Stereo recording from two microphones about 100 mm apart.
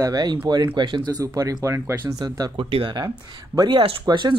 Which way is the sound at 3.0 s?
40° right (ahead or behind).